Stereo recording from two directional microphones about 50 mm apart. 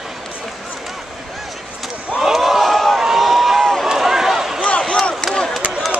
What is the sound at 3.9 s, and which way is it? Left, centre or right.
Run, centre.